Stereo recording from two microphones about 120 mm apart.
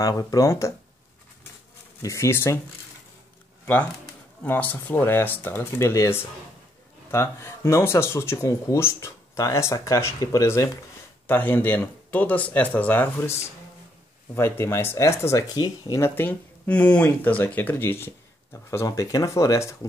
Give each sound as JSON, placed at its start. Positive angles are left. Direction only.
{"t": 0.0, "sound": "speech", "side_deg": 30}
{"t": 2.0, "sound": "speech", "side_deg": 25}
{"t": 4.4, "sound": "speech", "side_deg": 15}
{"t": 16.0, "sound": "speech", "side_deg": 15}